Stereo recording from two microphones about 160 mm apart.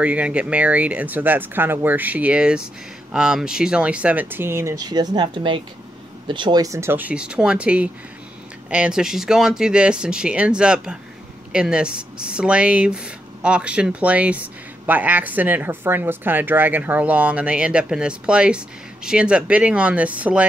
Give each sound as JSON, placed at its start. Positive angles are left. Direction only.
{"t": 0.0, "sound": "speech", "side_deg": -10}